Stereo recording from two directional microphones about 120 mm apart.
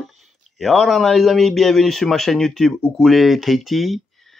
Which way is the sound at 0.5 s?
Centre (ahead or behind).